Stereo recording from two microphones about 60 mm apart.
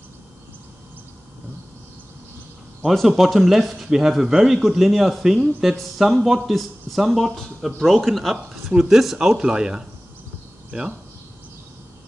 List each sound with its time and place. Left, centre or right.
2.8 s speech: centre